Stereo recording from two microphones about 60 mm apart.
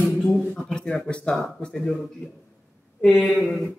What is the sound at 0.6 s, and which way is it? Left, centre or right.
Speech, centre.